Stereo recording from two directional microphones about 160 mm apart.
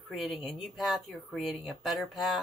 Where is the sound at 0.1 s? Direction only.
Centre (ahead or behind).